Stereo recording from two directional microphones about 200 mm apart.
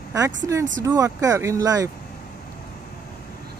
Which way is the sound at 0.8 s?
15° right (ahead or behind).